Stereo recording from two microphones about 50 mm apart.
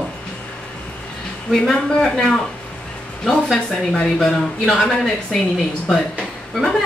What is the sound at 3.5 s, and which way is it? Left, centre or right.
Speech, centre.